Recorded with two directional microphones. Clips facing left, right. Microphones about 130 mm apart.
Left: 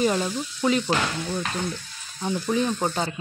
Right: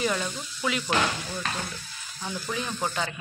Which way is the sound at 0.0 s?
30° left (ahead or behind).